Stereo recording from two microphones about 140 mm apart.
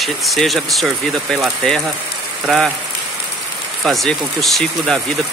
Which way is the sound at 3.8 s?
Centre (ahead or behind).